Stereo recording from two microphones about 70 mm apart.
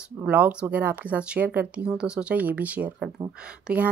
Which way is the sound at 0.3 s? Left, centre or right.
Centre.